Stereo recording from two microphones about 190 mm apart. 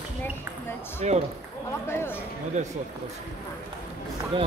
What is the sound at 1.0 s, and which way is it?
Speech, 35° right (ahead or behind).